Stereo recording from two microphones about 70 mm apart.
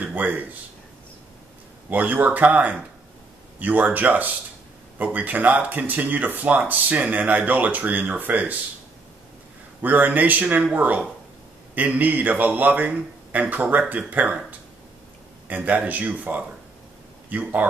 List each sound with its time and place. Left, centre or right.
0.0 s speech: right
1.9 s speech: right
9.8 s speech: right
15.4 s speech: right